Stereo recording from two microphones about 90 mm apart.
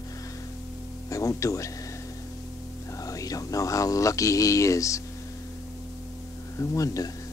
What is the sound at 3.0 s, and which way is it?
Speech, 40° left (ahead or behind).